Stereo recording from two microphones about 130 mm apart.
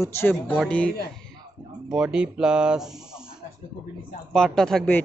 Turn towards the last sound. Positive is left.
turn(degrees=5)  # may be behind; listen again after turning